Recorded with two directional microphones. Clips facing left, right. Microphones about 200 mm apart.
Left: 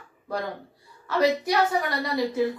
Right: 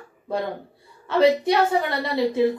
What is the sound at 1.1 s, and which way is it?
A woman's voice, 25° right (ahead or behind).